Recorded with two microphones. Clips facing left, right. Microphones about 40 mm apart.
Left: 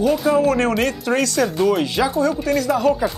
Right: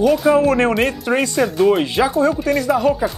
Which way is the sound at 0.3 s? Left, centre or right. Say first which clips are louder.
Right 3 dB; right.